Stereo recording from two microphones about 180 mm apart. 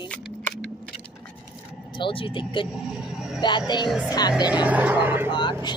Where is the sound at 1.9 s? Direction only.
25° left (ahead or behind).